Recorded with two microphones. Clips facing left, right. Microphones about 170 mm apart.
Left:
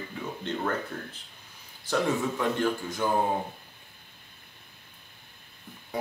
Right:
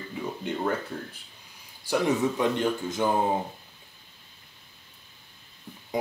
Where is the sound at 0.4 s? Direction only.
10° right (ahead or behind).